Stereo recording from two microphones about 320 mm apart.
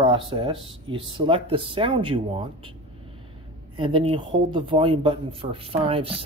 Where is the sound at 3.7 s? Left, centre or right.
Centre.